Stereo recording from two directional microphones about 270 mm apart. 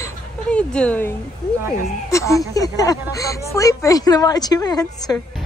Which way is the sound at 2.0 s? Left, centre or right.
Centre.